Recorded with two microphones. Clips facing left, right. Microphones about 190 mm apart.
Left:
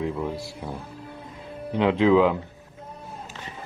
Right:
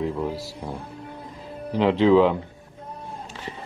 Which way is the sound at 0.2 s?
35° right (ahead or behind).